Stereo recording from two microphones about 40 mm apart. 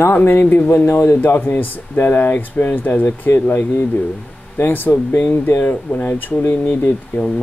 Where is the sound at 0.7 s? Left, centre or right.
Left.